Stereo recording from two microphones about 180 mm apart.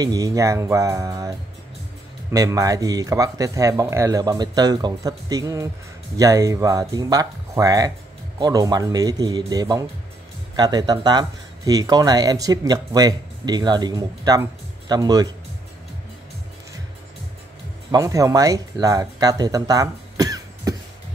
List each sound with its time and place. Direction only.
0.0 s speech: 20° right (ahead or behind)
2.3 s speech: 20° right (ahead or behind)
17.9 s speech: 20° right (ahead or behind)